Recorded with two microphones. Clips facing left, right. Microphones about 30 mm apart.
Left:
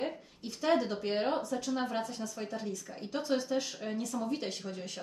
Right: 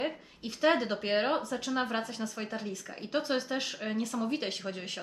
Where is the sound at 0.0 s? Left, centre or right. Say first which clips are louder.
Right 2 dB; right.